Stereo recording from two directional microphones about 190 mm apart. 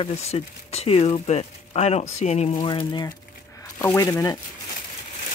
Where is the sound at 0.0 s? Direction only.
35° left (ahead or behind).